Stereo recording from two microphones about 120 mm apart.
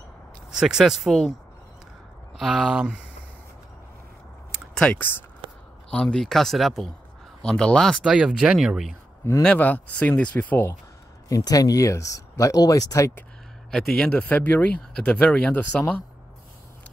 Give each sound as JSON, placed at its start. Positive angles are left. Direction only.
{"t": 0.5, "sound": "speech", "side_deg": -5}
{"t": 2.3, "sound": "speech", "side_deg": 0}
{"t": 4.7, "sound": "speech", "side_deg": 10}
{"t": 8.0, "sound": "speech", "side_deg": -5}
{"t": 9.4, "sound": "speech", "side_deg": 10}
{"t": 11.2, "sound": "speech", "side_deg": 30}
{"t": 13.7, "sound": "speech", "side_deg": 5}